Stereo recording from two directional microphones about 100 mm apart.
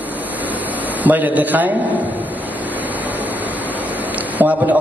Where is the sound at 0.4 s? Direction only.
15° right (ahead or behind).